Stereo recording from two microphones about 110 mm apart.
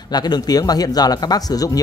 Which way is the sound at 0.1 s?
40° left (ahead or behind).